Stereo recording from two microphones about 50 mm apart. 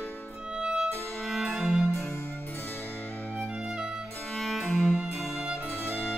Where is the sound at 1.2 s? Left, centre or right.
Centre.